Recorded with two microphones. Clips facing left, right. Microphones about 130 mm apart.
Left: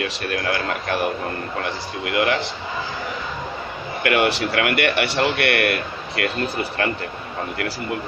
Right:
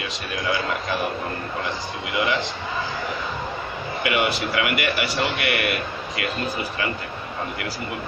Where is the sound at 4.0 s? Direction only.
65° left (ahead or behind).